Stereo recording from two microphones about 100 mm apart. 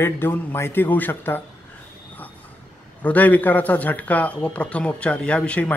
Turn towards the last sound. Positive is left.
turn(degrees=10)  # may be behind; listen again after turning